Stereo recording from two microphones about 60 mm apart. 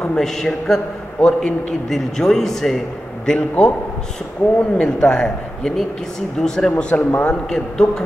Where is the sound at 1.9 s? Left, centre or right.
Centre.